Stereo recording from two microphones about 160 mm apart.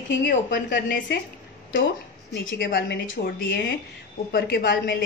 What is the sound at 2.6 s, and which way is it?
A woman's voice, 70° left (ahead or behind).